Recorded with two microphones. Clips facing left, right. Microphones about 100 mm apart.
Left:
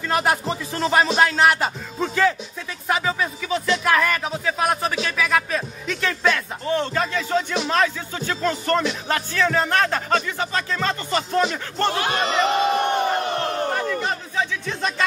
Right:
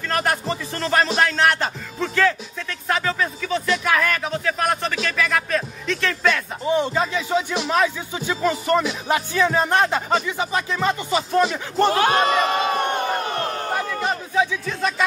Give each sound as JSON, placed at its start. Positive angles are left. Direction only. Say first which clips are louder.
{"t": 0.1, "sound": "speech", "louder": "left 1 dB", "side_deg": 5}
{"t": 6.6, "sound": "speech", "louder": "right 3 dB", "side_deg": -15}
{"t": 12.0, "sound": "speech", "louder": "right 3 dB", "side_deg": -50}
{"t": 13.7, "sound": "speech", "louder": "even", "side_deg": -10}